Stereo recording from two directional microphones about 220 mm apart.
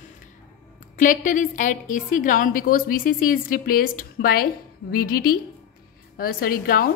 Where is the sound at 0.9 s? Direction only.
35° left (ahead or behind).